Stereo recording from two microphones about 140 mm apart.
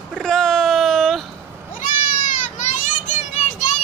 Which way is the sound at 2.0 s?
60° left (ahead or behind).